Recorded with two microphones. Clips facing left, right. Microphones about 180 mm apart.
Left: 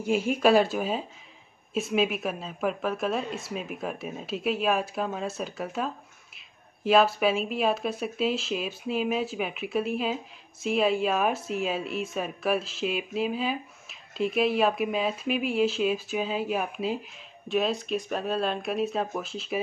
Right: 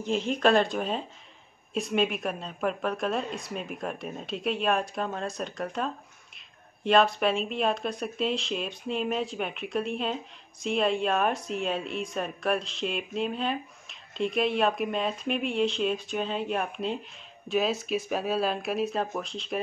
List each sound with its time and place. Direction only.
0.0 s a woman's voice: 10° left (ahead or behind)